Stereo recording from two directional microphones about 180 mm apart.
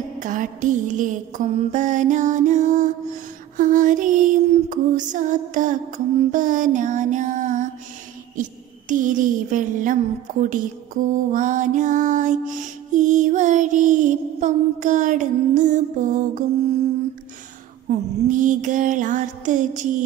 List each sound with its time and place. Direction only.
0.2 s music: 45° right (ahead or behind)
8.4 s a sound: 45° right (ahead or behind)
10.4 s music: 45° right (ahead or behind)
17.8 s music: 45° right (ahead or behind)